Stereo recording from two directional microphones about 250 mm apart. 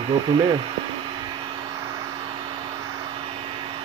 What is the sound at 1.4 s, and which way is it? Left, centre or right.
Vehicle, centre.